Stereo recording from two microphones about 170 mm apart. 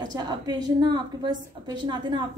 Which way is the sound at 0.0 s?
25° right (ahead or behind).